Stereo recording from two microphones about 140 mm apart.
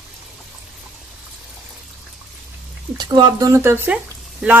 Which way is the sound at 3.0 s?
30° right (ahead or behind).